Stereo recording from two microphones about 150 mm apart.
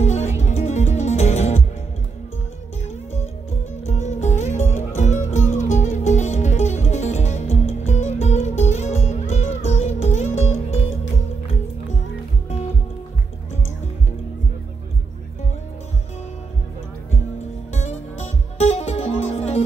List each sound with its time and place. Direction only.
0.0 s music: 50° left (ahead or behind)
3.8 s music: 50° left (ahead or behind)
17.7 s music: 45° left (ahead or behind)